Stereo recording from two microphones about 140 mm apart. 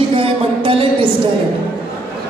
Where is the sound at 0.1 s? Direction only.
40° right (ahead or behind).